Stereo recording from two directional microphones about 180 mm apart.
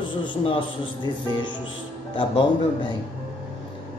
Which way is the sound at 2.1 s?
25° left (ahead or behind).